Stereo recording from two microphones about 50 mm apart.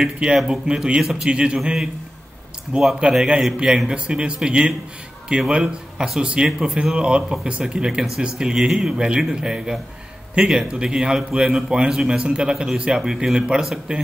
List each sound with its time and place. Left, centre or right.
0.0 s a man's voice: centre
3.0 s a man's voice: centre
7.0 s a man's voice: right